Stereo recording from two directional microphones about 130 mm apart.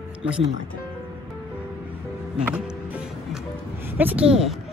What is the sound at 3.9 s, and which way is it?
Speech, 10° right (ahead or behind).